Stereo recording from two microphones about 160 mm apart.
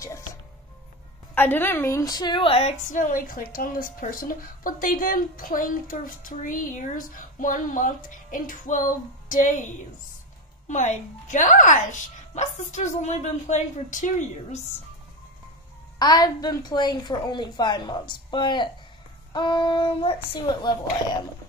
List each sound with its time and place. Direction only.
1.3 s a woman's voice: 10° left (ahead or behind); by 14.6 s 55° left (ahead or behind)
16.0 s a woman's voice: 25° left (ahead or behind)